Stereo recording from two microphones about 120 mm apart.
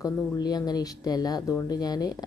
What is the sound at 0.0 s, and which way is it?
A woman's voice, 35° left (ahead or behind).